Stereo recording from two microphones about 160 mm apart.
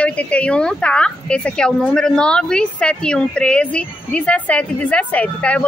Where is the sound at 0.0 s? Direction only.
5° left (ahead or behind).